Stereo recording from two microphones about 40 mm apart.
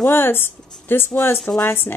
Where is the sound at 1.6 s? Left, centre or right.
Left.